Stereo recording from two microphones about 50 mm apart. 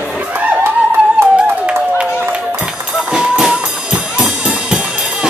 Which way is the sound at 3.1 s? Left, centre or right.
Centre.